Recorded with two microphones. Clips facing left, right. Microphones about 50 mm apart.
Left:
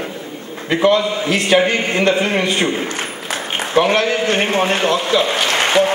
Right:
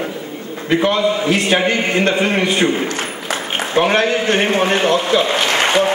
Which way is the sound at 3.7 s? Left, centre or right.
Right.